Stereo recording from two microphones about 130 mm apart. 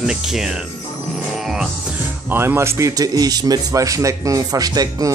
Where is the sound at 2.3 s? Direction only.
15° right (ahead or behind).